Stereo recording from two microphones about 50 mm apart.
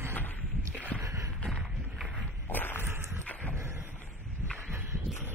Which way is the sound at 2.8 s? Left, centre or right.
Right.